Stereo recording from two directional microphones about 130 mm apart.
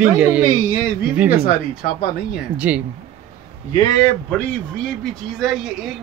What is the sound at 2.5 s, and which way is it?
Speech, 10° right (ahead or behind).